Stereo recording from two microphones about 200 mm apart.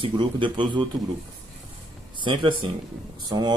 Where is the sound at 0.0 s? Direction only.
25° right (ahead or behind).